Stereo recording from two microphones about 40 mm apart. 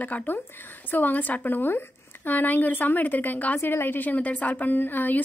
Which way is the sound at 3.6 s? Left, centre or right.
Left.